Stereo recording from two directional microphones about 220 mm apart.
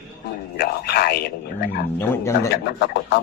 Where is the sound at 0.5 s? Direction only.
45° left (ahead or behind).